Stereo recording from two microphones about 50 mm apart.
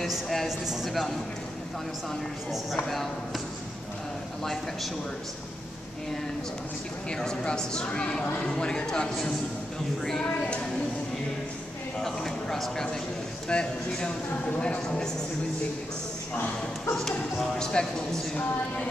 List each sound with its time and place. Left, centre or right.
0.0 s speech: centre
2.5 s speech: centre
7.1 s speech: centre
12.0 s speech: centre
13.5 s speech: centre
16.9 s speech: centre